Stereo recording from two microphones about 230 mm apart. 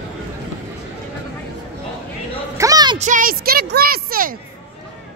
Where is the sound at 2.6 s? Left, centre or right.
Centre.